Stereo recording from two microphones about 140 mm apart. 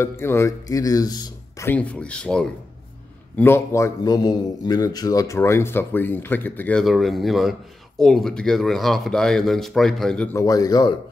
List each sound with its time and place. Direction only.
0.0 s a man's voice: 20° left (ahead or behind)
1.7 s speech: 10° left (ahead or behind)
3.3 s a man's voice: 15° left (ahead or behind)
6.8 s speech: centre (ahead or behind)
10.3 s a man's voice: 25° left (ahead or behind)